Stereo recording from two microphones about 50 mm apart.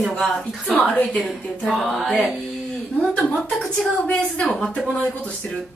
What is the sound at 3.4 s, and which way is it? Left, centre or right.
A woman's voice, centre.